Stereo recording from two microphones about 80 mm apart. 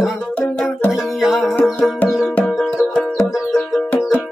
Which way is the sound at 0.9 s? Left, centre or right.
Centre.